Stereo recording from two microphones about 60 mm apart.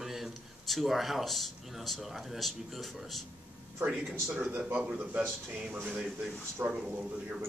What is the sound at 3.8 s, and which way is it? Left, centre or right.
Speech, right.